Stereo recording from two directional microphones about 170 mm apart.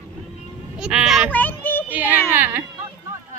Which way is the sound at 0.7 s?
5° right (ahead or behind).